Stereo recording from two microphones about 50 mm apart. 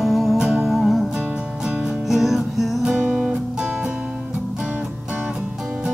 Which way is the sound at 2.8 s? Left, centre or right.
Centre.